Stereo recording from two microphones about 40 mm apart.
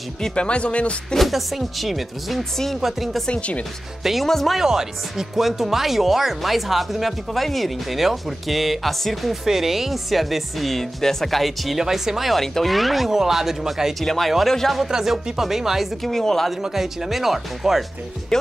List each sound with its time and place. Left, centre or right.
0.4 s speech: left
1.1 s speech: centre
2.5 s speech: centre
2.8 s speech: centre
3.3 s speech: left
4.0 s speech: centre
4.3 s speech: centre
4.6 s speech: centre
12.4 s speech: centre
14.0 s speech: centre
14.8 s speech: centre
16.0 s speech: centre
16.7 s speech: centre
18.3 s speech: centre